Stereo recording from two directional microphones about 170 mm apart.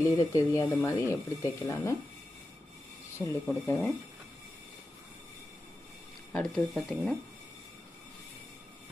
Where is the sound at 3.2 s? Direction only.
15° left (ahead or behind).